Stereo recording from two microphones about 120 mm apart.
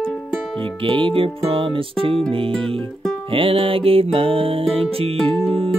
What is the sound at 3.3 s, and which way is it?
Music, 50° right (ahead or behind).